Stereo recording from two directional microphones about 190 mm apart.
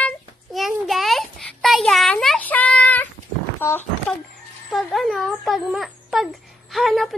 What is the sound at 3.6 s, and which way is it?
Speech, 10° left (ahead or behind).